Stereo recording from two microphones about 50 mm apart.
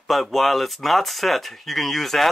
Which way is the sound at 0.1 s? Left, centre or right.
Centre.